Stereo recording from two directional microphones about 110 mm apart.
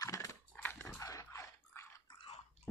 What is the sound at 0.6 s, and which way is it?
Dog, 20° left (ahead or behind).